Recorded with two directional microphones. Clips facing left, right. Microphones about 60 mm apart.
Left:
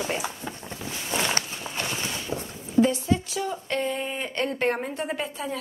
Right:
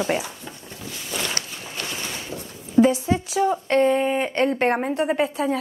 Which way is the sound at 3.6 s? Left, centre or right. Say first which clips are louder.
Right 9 dB; right.